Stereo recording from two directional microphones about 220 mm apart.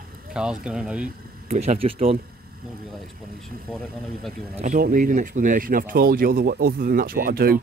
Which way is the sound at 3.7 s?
5° left (ahead or behind).